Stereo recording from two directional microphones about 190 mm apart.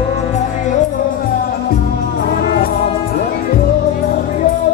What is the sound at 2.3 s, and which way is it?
Music, 50° left (ahead or behind).